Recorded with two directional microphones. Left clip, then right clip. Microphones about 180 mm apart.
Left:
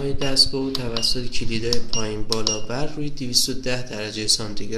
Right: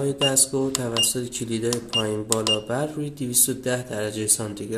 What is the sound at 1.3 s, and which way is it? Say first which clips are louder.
Speech: left 1 dB; 55° right (ahead or behind).